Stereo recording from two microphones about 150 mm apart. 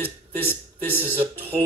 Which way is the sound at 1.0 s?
40° right (ahead or behind).